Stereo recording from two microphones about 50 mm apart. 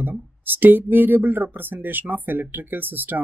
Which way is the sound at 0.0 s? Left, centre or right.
Right.